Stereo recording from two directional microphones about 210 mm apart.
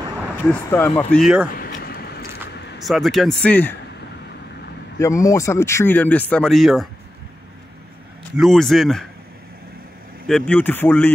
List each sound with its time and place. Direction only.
0.5 s speech: 10° left (ahead or behind)
1.6 s a sound: 45° left (ahead or behind)
2.8 s speech: centre (ahead or behind)
4.9 s speech: 15° left (ahead or behind)
8.4 s speech: centre (ahead or behind)
10.2 s speech: 5° left (ahead or behind)